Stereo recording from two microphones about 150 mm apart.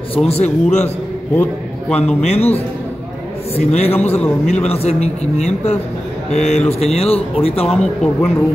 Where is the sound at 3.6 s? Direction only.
45° left (ahead or behind).